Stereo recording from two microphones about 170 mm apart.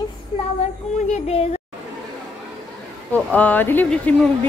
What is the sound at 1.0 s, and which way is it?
Speech, 40° left (ahead or behind).